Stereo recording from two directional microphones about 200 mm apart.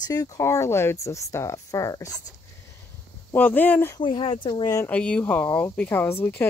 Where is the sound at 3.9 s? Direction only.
25° left (ahead or behind).